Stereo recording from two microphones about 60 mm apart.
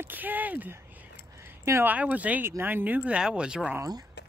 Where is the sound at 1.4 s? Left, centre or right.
Right.